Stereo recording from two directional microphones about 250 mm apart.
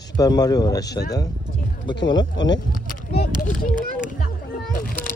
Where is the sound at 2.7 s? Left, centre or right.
Left.